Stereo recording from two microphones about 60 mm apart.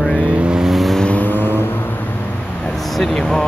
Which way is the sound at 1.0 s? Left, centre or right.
Left.